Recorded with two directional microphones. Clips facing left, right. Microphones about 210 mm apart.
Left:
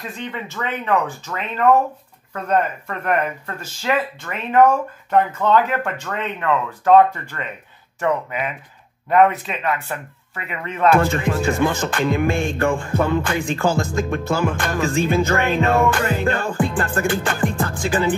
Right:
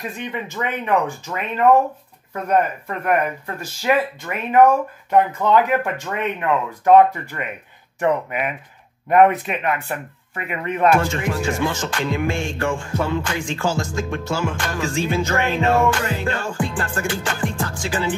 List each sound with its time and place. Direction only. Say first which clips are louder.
0.0 s speech: right 1 dB; 15° right (ahead or behind)
11.0 s music: left 3 dB; 55° left (ahead or behind)